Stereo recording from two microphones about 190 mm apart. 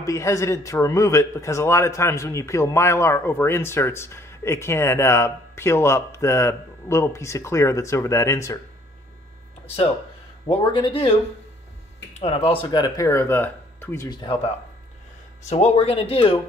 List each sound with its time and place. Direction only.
0.0 s a man's voice: 15° left (ahead or behind)
10.4 s speech: 25° left (ahead or behind)
15.4 s speech: 35° left (ahead or behind)